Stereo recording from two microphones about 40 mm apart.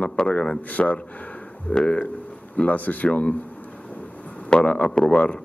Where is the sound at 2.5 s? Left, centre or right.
Left.